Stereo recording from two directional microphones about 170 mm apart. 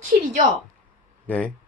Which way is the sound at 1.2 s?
5° left (ahead or behind).